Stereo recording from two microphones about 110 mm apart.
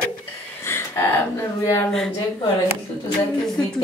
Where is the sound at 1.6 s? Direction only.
30° left (ahead or behind).